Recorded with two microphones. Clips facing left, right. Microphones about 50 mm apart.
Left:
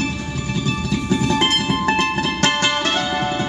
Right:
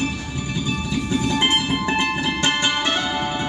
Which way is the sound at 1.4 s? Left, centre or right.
Centre.